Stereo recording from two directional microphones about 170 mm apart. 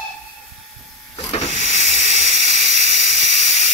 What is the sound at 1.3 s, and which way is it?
Hiss, 40° left (ahead or behind).